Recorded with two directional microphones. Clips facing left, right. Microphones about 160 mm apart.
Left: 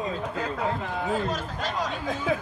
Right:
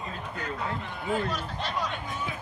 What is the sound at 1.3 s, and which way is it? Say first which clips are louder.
Speech: left 2 dB; 45° left (ahead or behind).